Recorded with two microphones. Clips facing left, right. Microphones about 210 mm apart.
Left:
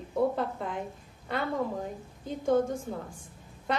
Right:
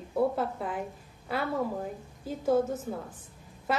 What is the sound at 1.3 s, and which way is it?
A woman's voice, 5° right (ahead or behind).